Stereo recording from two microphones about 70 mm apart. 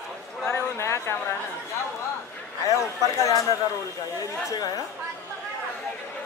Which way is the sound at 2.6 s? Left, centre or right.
Left.